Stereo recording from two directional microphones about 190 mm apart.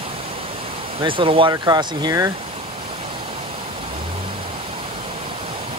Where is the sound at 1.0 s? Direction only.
25° right (ahead or behind).